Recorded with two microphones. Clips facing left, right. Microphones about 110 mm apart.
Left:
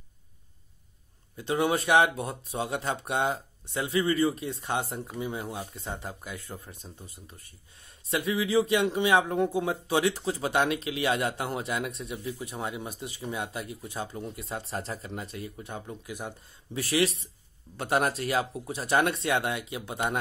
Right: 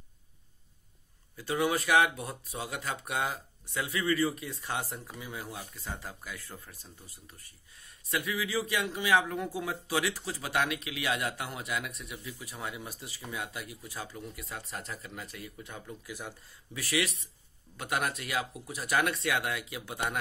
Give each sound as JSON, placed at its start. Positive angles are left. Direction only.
{"t": 1.3, "sound": "a man's voice", "side_deg": 25}